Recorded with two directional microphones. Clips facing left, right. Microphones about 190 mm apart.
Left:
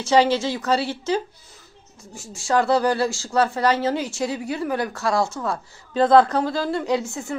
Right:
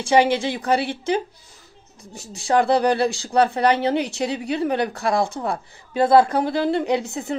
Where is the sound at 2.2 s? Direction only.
15° right (ahead or behind).